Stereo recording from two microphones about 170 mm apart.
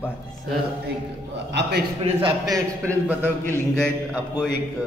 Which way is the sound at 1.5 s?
80° right.